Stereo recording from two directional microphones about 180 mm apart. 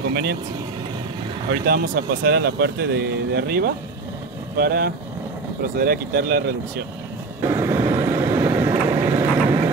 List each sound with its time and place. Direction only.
0.1 s speech: 60° right (ahead or behind)
1.5 s speech: 60° right (ahead or behind)
7.4 s vehicle: 15° right (ahead or behind)